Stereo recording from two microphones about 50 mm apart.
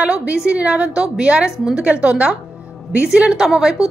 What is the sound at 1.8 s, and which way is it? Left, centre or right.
Speech, right.